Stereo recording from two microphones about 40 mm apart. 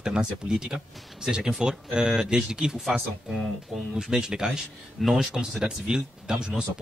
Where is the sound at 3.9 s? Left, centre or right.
Centre.